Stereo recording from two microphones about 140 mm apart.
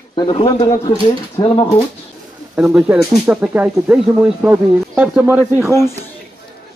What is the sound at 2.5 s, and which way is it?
Speech, 10° right (ahead or behind).